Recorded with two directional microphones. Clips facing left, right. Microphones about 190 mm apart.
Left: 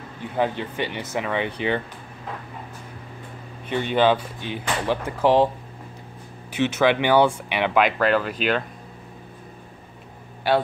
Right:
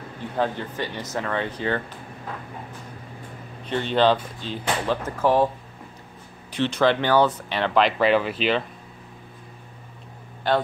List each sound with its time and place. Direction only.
0.4 s speech: 15° left (ahead or behind)
3.6 s speech: 10° left (ahead or behind)
6.6 s speech: 10° left (ahead or behind)
8.0 s speech: 5° right (ahead or behind)
10.4 s speech: 10° left (ahead or behind)